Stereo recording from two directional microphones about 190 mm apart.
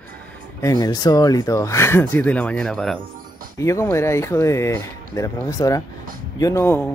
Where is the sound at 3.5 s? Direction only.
15° left (ahead or behind).